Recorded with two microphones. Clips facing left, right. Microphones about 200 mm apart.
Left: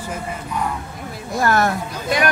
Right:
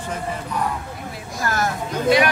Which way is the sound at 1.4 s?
60° left (ahead or behind).